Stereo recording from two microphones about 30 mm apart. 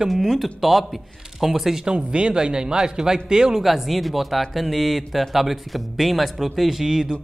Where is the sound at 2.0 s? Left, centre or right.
Right.